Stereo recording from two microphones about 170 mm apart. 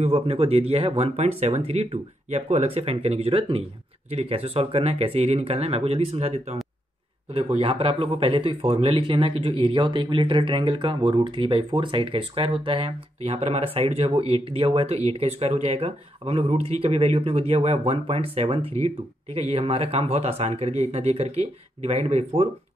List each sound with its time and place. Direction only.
0.0 s speech: 35° right (ahead or behind)